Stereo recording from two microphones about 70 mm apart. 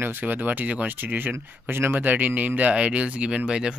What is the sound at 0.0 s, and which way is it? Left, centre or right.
Speech, right.